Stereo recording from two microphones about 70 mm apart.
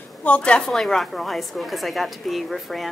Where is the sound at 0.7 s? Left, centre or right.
Centre.